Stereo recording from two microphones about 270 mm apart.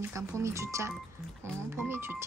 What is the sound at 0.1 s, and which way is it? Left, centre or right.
Speech, centre.